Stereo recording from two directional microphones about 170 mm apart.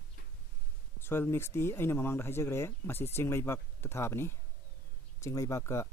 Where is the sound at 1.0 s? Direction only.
15° left (ahead or behind).